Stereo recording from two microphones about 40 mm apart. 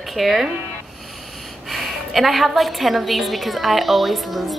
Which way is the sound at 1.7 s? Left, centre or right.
Centre.